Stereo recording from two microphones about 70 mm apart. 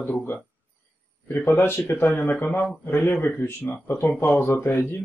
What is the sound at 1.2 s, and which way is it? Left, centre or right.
A man's voice, left.